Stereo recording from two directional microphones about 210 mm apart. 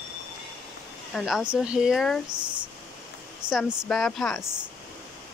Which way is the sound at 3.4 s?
20° right (ahead or behind).